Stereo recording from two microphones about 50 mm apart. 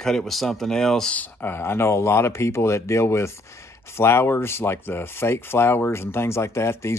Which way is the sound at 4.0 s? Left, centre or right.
Left.